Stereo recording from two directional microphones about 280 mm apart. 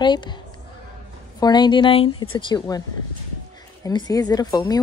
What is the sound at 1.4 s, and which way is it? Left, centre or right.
Speech, centre.